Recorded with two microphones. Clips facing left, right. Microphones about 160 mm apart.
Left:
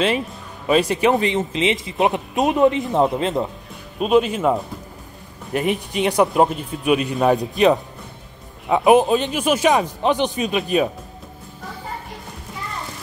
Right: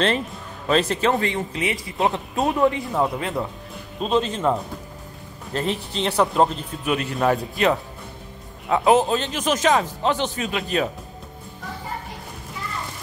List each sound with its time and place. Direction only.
0.7 s speech: 10° left (ahead or behind)
4.0 s speech: 15° left (ahead or behind)